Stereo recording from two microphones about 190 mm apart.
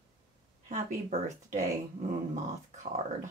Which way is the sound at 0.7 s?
40° right (ahead or behind).